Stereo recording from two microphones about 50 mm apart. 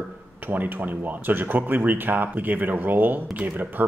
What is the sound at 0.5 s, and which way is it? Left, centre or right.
Speech, right.